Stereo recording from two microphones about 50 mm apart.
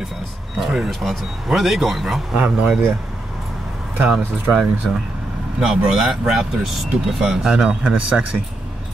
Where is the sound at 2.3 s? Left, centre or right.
Centre.